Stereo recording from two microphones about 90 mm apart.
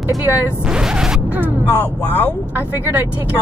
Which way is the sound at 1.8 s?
15° left (ahead or behind).